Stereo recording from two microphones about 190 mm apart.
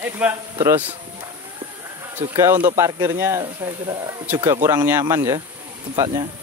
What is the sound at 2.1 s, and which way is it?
Speech, 15° right (ahead or behind).